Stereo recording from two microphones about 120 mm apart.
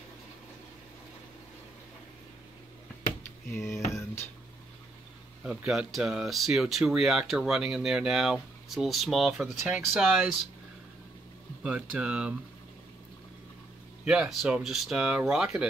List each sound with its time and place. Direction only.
3.9 s music: 20° left (ahead or behind)
5.4 s speech: 10° right (ahead or behind)
9.6 s speech: 15° right (ahead or behind)
11.6 s speech: 10° right (ahead or behind)
14.0 s speech: 5° right (ahead or behind)